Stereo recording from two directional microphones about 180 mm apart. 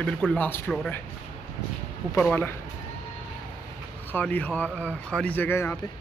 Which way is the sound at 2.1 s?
10° left (ahead or behind).